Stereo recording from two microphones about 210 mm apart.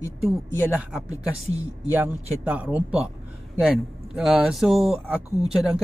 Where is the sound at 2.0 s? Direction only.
10° right (ahead or behind).